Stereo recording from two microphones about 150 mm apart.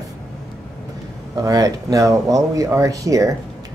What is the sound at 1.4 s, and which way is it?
Speech, 25° right (ahead or behind).